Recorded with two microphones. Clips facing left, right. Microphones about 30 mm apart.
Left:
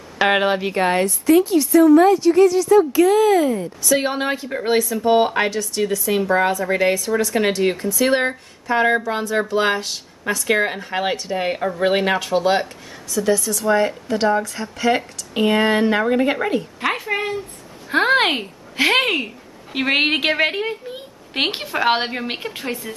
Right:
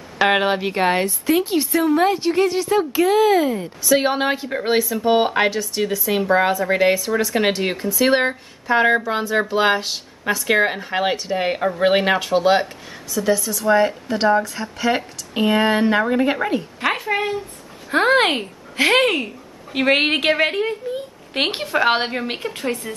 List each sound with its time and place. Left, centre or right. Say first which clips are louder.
0.2 s a woman's voice: even; centre; by 2.9 s right
2.9 s a woman's voice: left 1 dB; centre
17.8 s speech: even; centre